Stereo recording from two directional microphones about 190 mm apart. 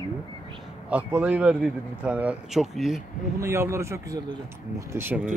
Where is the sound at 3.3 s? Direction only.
15° right (ahead or behind).